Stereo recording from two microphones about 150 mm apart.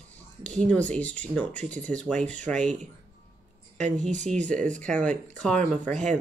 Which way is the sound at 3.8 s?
55° right (ahead or behind).